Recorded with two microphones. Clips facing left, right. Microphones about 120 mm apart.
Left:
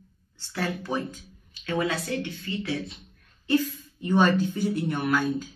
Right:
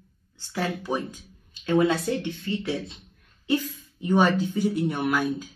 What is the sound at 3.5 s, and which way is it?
Speech, 15° right (ahead or behind).